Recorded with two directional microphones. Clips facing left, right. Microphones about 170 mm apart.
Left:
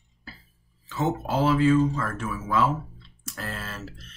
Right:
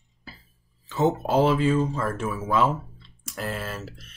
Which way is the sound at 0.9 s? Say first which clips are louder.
Right 4 dB; 20° right (ahead or behind).